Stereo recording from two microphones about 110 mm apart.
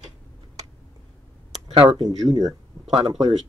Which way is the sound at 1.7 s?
70° right (ahead or behind).